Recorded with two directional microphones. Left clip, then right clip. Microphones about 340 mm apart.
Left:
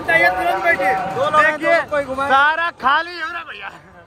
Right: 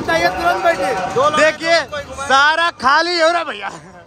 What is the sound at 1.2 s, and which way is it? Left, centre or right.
Speech, right.